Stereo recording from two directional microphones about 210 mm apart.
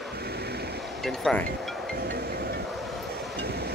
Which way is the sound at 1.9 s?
50° right (ahead or behind).